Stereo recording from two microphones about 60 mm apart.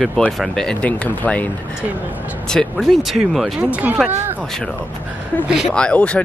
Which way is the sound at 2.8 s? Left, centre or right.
Centre.